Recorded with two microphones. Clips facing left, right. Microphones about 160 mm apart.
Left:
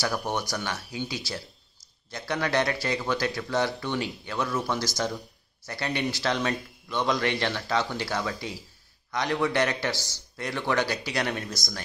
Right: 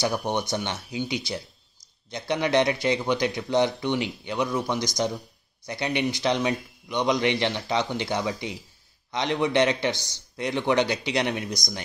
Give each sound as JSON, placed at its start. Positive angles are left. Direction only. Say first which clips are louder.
{"t": 0.0, "sound": "speech", "louder": "right 3 dB", "side_deg": -20}